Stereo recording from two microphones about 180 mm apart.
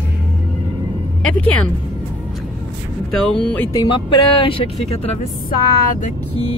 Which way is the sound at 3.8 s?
25° left (ahead or behind).